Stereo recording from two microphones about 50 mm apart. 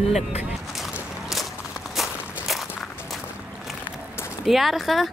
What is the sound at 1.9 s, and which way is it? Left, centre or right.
Walk, centre.